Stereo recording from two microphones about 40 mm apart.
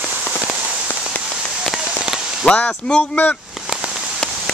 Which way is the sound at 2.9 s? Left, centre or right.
Left.